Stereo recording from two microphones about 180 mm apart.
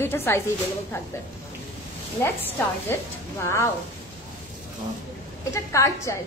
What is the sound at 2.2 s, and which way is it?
Speech, 15° left (ahead or behind).